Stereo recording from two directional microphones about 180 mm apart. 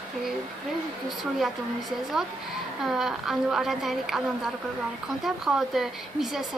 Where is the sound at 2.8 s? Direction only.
Centre (ahead or behind).